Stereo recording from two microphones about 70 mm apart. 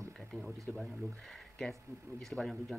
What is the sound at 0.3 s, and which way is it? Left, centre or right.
Speech, centre.